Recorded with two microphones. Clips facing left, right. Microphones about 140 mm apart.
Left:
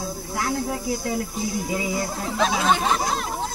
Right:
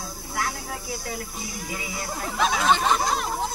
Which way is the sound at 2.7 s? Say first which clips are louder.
Even; centre (ahead or behind).